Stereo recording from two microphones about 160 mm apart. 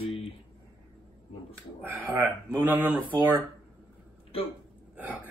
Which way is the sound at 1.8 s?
15° right (ahead or behind).